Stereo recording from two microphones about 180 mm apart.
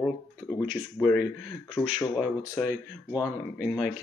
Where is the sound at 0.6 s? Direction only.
5° right (ahead or behind).